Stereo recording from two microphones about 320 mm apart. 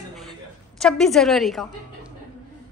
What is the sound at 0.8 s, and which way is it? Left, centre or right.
Speech, centre.